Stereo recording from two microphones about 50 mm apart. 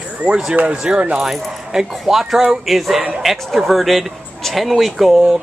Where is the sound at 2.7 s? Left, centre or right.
Centre.